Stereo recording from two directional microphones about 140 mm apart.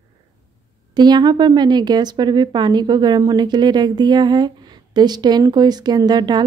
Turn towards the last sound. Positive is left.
turn(degrees=-30)  # may be behind; listen again after turning